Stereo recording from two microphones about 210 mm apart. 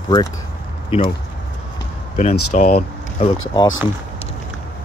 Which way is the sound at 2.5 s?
45° left (ahead or behind).